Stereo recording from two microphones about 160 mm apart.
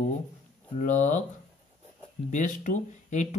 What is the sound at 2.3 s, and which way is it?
Speech, 50° left (ahead or behind).